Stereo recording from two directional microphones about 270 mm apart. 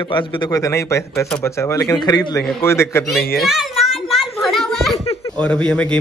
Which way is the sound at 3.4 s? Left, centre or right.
Centre.